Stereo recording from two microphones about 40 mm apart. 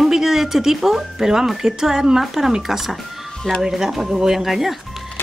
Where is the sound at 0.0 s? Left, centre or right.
Centre.